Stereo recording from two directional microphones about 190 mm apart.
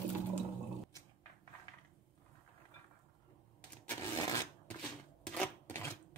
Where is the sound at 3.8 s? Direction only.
10° left (ahead or behind).